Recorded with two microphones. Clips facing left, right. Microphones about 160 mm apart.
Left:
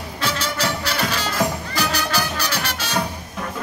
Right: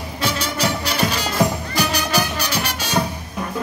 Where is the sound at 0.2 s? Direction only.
15° right (ahead or behind).